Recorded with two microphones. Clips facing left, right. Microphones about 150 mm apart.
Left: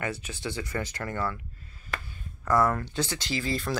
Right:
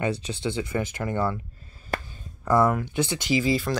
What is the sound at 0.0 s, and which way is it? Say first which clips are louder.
Speech: right 6 dB; 25° right (ahead or behind).